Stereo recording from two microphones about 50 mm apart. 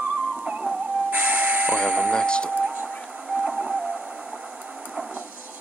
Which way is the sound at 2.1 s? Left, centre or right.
Centre.